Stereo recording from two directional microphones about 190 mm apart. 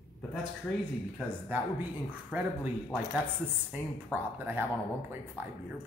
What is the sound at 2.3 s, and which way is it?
Speech, 5° right (ahead or behind).